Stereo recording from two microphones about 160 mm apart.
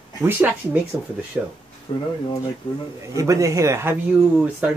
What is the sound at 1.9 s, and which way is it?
Speech, 30° left (ahead or behind).